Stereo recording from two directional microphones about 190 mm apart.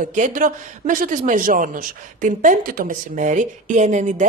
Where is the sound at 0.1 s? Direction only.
45° right (ahead or behind).